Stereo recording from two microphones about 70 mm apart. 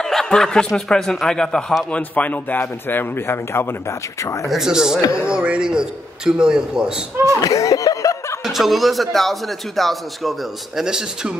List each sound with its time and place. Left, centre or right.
0.0 s snicker: centre
0.7 s speech: centre
1.9 s a man's voice: centre; by 4.5 s left
4.5 s a man's voice: centre
7.4 s snicker: left
8.5 s a man's voice: centre